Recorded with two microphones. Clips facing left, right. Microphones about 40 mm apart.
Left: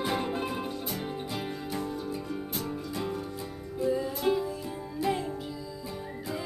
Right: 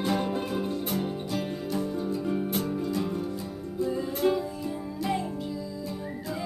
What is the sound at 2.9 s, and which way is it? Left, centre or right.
Music, centre.